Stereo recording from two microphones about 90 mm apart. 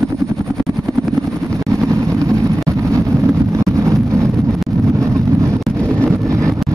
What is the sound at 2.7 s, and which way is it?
Wind noise, 35° right (ahead or behind).